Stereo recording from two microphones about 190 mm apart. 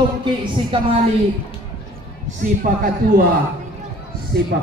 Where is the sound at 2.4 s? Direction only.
45° right (ahead or behind).